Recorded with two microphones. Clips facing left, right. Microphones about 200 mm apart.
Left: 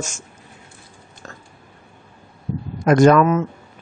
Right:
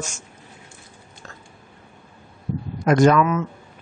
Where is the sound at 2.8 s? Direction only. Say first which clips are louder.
Left 3 dB; 50° left (ahead or behind).